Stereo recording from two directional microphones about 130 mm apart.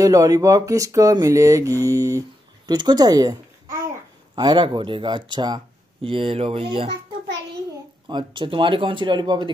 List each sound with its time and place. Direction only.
0.0 s speech: 25° right (ahead or behind); by 6.9 s 45° right (ahead or behind)
8.1 s speech: 40° right (ahead or behind)